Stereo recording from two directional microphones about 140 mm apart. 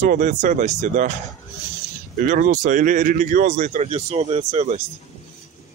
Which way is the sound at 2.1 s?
70° right (ahead or behind).